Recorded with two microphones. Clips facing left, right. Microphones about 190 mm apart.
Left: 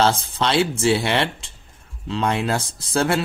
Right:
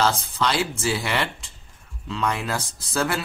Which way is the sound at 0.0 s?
25° left (ahead or behind).